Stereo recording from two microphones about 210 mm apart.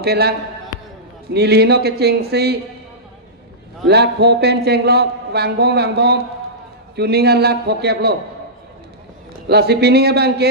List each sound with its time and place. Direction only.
0.0 s a man's voice: 50° right (ahead or behind)
3.8 s a man's voice: 50° right (ahead or behind)
9.5 s a man's voice: 50° right (ahead or behind)